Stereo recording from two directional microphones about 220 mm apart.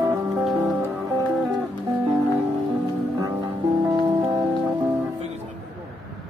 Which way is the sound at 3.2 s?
20° right (ahead or behind).